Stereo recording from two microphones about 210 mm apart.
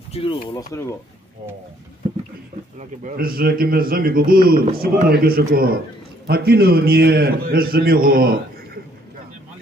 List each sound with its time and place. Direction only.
0.1 s speech: 25° left (ahead or behind)
3.0 s speech: 40° right (ahead or behind)